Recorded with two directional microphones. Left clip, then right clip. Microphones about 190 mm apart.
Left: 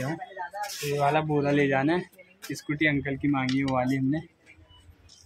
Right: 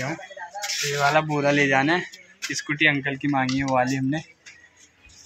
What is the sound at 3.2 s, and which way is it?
Speech, 30° right (ahead or behind).